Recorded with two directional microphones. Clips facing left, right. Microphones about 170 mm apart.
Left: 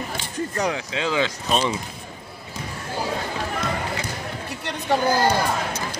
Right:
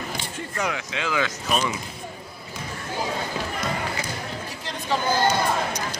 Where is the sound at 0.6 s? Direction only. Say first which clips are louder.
Left 2 dB; 30° left (ahead or behind).